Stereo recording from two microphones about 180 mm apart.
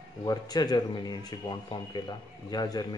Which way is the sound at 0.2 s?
20° left (ahead or behind).